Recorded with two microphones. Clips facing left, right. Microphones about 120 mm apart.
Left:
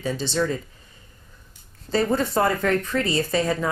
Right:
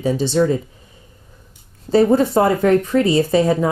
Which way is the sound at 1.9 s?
15° right (ahead or behind).